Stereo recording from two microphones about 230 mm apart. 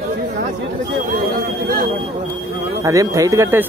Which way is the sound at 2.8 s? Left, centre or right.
Centre.